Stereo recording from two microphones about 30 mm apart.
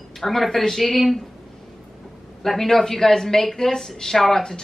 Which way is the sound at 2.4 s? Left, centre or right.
Centre.